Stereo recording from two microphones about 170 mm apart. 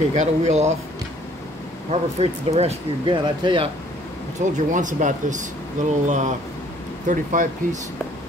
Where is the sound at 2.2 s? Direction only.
40° right (ahead or behind).